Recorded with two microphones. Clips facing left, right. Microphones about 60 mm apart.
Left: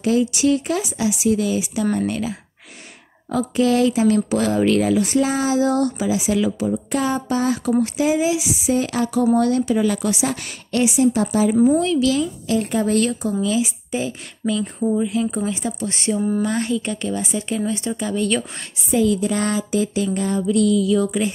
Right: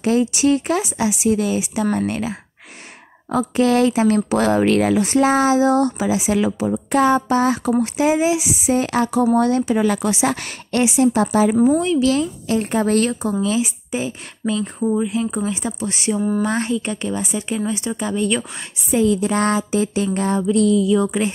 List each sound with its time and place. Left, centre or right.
0.0 s speech: right
5.6 s speech: right
6.9 s speech: right
9.2 s speech: right
10.2 s speech: right
11.5 s speech: right
12.0 s speech: right
13.9 s speech: right
16.4 s speech: right
16.7 s speech: right
20.8 s speech: right